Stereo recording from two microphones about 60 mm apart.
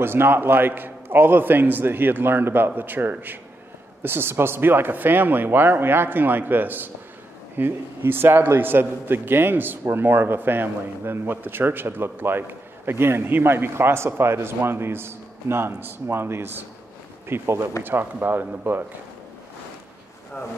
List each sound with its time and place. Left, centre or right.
0.0 s a man's voice: right
17.8 s a man's voice: right